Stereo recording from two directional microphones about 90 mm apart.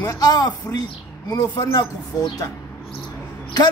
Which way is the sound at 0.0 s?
45° left (ahead or behind).